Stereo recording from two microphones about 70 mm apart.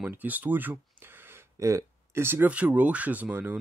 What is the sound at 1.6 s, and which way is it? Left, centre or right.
Speech, right.